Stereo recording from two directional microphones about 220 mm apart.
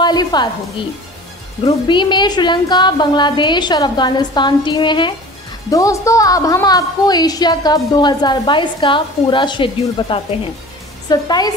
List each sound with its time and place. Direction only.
0.0 s a woman's voice: 20° left (ahead or behind)
1.6 s a woman's voice: 20° left (ahead or behind)